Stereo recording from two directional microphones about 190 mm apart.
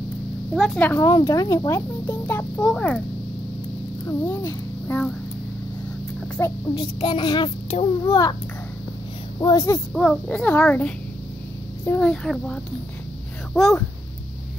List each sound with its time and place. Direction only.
0.6 s speech: 5° left (ahead or behind)
4.0 s a child's voice: 15° left (ahead or behind)
6.4 s speech: 10° left (ahead or behind)
6.8 s a child's voice: 25° left (ahead or behind)
9.4 s a child's voice: 20° left (ahead or behind)
9.9 s a child's voice: 5° left (ahead or behind)